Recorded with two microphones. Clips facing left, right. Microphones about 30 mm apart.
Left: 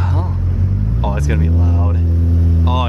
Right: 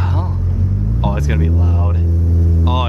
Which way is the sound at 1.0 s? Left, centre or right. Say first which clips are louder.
Right 1 dB; centre.